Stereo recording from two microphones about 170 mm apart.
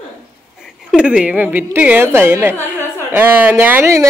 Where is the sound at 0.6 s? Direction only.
5° right (ahead or behind).